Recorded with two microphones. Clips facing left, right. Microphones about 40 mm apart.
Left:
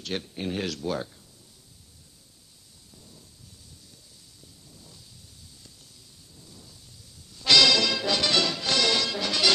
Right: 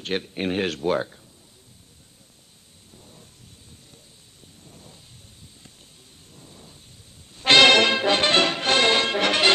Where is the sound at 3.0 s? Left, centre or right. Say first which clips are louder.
Right 3 dB; right.